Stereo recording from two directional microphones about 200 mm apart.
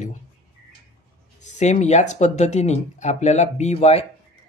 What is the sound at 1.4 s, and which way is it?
Speech, 35° left (ahead or behind).